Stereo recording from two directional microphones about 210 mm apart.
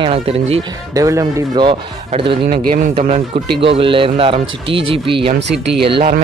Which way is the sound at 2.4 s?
45° right (ahead or behind).